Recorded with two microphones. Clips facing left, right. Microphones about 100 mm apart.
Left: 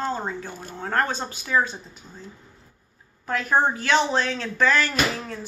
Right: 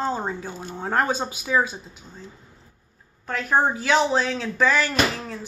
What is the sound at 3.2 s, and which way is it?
Speech, centre (ahead or behind).